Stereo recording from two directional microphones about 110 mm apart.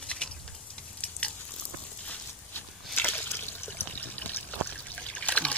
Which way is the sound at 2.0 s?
15° left (ahead or behind).